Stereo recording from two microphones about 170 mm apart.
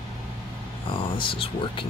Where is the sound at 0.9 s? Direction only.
30° left (ahead or behind).